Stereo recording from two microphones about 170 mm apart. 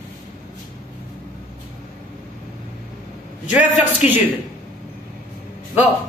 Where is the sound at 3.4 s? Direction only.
10° right (ahead or behind).